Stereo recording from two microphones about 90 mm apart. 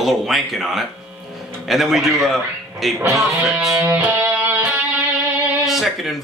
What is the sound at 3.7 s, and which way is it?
Music, 25° right (ahead or behind).